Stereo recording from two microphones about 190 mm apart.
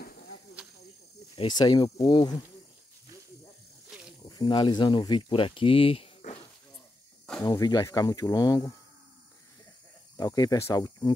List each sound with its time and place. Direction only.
1.3 s speech: 25° left (ahead or behind)
4.2 s speech: 20° left (ahead or behind)
7.4 s speech: 20° left (ahead or behind)
10.1 s speech: 20° left (ahead or behind)